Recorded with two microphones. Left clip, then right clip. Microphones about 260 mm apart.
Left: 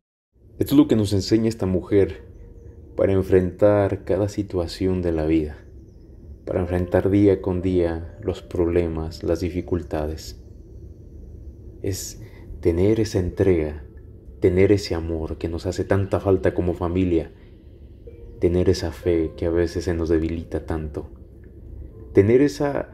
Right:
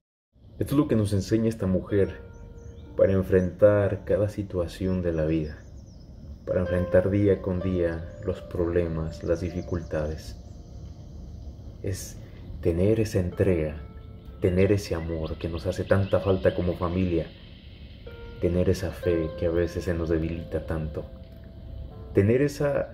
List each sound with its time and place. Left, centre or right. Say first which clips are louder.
0.6 s speech: left 7 dB; centre
12.6 s speech: left 4 dB; centre
18.4 s speech: left 5 dB; centre
22.1 s speech: left 6 dB; centre